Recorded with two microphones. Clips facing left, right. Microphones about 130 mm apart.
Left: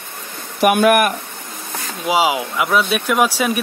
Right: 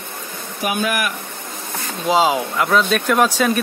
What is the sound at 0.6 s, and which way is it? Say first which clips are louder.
Speech: left 8 dB; 65° left (ahead or behind).